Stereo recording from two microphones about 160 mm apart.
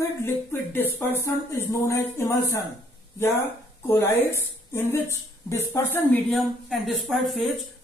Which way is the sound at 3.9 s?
15° left (ahead or behind).